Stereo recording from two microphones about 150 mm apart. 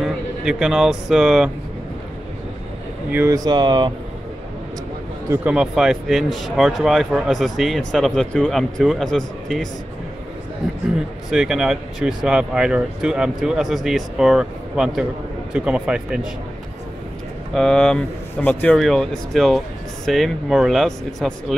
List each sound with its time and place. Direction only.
0.0 s speech: 5° right (ahead or behind)
3.1 s speech: 15° right (ahead or behind)
5.3 s speech: 10° right (ahead or behind)
11.2 s speech: 5° right (ahead or behind)
17.6 s speech: 5° left (ahead or behind)